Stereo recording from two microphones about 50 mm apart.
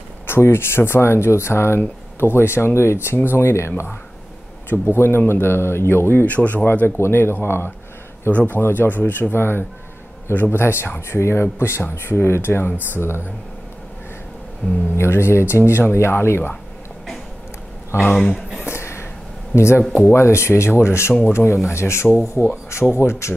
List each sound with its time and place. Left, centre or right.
0.3 s speech: left
6.2 s speech: left
7.0 s speech: left
8.3 s speech: left
8.5 s speech: left
14.6 s speech: left
15.0 s speech: left
17.9 s speech: left
18.7 s a sound: left
19.5 s speech: left